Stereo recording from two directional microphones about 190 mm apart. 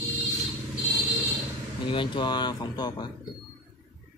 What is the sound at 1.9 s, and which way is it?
Mantra, 25° left (ahead or behind).